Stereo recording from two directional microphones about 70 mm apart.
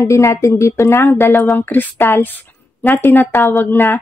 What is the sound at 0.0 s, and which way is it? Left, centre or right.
A woman's voice, left.